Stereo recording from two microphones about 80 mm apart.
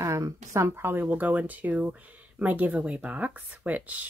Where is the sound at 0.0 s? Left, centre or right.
Right.